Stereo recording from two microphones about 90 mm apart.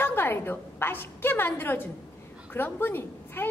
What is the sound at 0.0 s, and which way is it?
A woman's voice, 25° left (ahead or behind).